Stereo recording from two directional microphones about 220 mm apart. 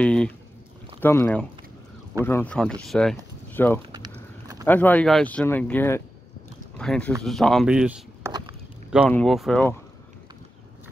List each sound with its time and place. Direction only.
0.0 s speech: 5° left (ahead or behind)
8.3 s walk: 20° right (ahead or behind)
9.1 s speech: centre (ahead or behind)